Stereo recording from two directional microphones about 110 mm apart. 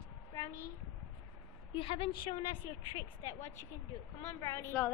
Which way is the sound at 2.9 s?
35° left (ahead or behind).